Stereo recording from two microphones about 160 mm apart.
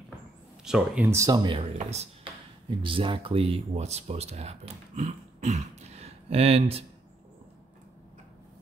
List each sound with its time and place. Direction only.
0.7 s speech: 5° right (ahead or behind)
1.1 s speech: 20° right (ahead or behind)
1.6 s speech: 45° right (ahead or behind)
2.8 s speech: 30° right (ahead or behind)